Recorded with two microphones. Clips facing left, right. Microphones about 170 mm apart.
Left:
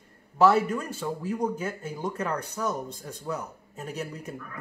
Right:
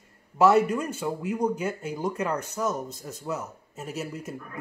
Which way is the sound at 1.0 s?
10° right (ahead or behind).